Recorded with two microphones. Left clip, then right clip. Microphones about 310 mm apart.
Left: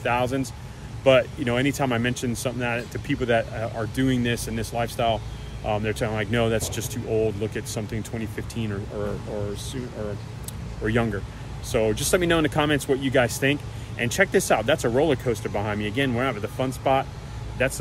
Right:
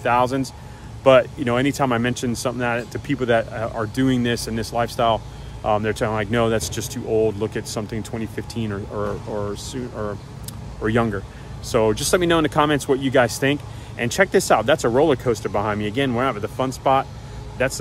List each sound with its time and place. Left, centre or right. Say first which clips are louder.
0.0 s speech: right 5 dB; centre